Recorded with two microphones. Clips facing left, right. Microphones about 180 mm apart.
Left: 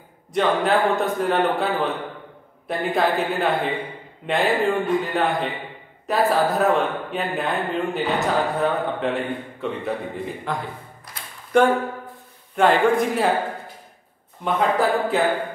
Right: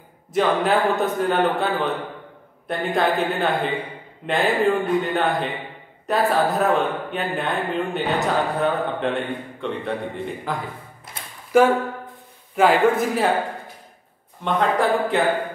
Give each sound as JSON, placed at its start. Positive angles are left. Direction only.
{"t": 0.3, "sound": "a man's voice", "side_deg": 0}
{"t": 11.1, "sound": "a sound", "side_deg": -25}
{"t": 11.5, "sound": "a man's voice", "side_deg": -5}
{"t": 14.4, "sound": "a man's voice", "side_deg": 0}